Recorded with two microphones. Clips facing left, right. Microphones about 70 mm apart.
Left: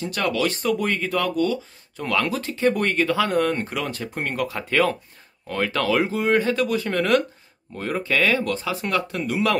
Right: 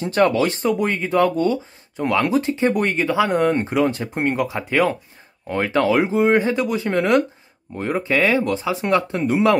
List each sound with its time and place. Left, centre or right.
0.0 s speech: right